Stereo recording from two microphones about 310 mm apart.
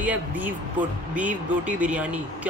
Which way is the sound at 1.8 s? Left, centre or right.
Centre.